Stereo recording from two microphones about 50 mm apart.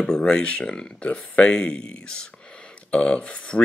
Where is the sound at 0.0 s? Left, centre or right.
Centre.